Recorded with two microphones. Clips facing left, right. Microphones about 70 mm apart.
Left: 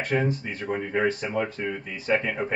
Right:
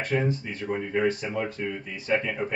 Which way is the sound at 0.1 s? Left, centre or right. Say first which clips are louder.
Left 1 dB; left.